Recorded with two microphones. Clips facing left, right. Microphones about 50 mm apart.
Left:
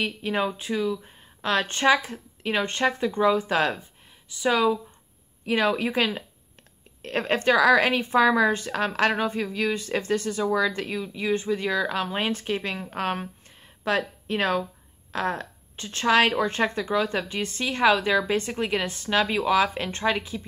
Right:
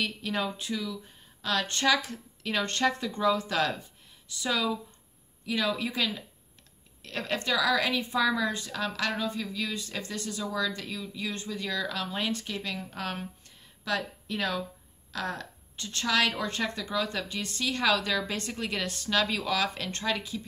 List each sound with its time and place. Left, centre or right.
0.0 s a woman's voice: left